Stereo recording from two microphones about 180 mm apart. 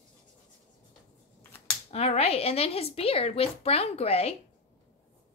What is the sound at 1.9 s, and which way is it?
A woman's voice, 35° left (ahead or behind).